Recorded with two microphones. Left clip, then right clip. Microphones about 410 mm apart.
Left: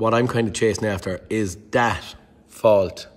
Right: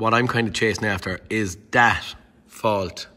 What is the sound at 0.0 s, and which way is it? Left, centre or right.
A man's voice, centre.